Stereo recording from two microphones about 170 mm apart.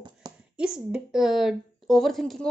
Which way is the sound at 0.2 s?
25° right (ahead or behind).